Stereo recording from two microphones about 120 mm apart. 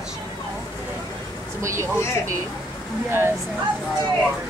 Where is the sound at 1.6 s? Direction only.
25° right (ahead or behind).